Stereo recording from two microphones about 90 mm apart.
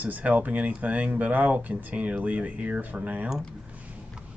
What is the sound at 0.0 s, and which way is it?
Speech, 15° right (ahead or behind).